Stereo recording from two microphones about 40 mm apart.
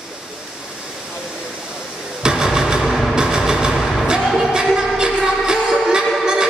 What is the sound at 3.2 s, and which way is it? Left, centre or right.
Music, centre.